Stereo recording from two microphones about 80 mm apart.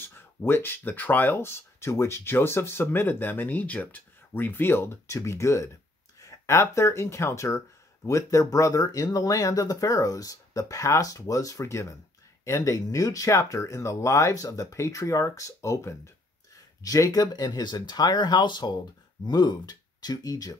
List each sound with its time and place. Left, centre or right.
0.0 s speech: left
16.8 s speech: left
19.2 s speech: left